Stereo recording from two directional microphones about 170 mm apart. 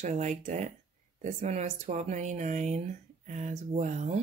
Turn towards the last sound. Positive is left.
turn(degrees=-45)  # may be behind; listen again after turning